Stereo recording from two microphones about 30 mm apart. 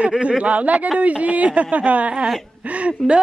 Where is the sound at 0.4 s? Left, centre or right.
Right.